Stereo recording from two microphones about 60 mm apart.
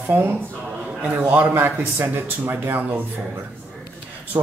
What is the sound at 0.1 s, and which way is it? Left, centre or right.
Speech, right.